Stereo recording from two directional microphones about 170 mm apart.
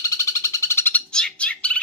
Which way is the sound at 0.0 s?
20° left (ahead or behind).